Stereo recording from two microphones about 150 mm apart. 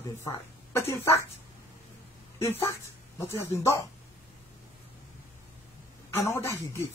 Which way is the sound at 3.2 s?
15° left (ahead or behind).